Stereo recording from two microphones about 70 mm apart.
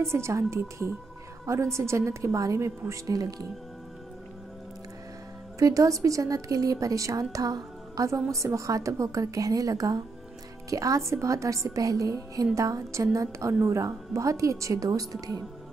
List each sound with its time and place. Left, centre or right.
0.0 s a woman's voice: right
5.6 s a woman's voice: right